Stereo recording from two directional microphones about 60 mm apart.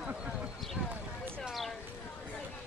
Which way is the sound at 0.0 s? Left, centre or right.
Centre.